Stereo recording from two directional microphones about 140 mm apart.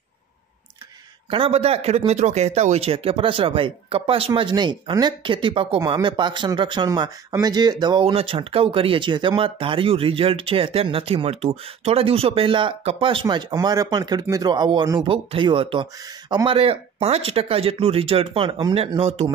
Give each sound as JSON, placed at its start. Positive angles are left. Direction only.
{"t": 1.3, "sound": "speech", "side_deg": -45}
{"t": 8.0, "sound": "speech", "side_deg": -40}